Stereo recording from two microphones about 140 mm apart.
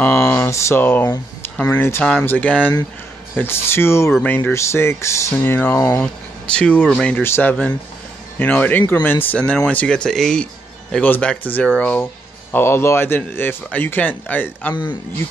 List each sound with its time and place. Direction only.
0.0 s speech: 15° left (ahead or behind)
6.0 s speech: 5° left (ahead or behind)